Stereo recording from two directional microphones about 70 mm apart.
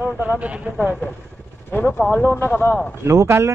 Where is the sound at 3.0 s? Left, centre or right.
Right.